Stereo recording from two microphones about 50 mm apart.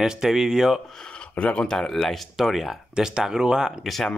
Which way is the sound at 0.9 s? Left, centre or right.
Centre.